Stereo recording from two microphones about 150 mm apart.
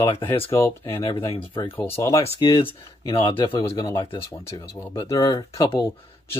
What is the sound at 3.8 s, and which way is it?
Speech, 20° left (ahead or behind).